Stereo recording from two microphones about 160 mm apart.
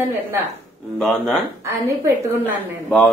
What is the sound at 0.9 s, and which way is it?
Speech, 5° left (ahead or behind).